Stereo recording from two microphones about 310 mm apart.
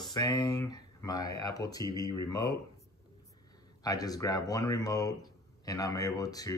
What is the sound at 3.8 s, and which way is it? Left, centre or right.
Speech, centre.